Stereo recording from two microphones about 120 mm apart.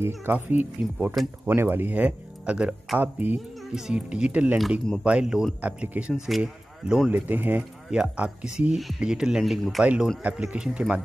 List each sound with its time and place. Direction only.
0.0 s speech: 15° right (ahead or behind)